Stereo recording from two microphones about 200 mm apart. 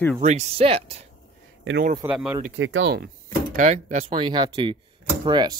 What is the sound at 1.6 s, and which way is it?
Speech, 65° right (ahead or behind).